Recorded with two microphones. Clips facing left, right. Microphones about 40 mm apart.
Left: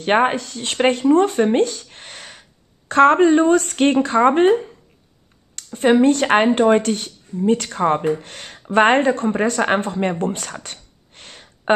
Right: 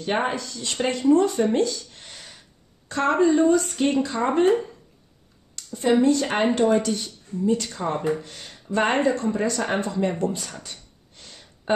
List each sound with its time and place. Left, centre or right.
0.0 s speech: left
5.6 s speech: left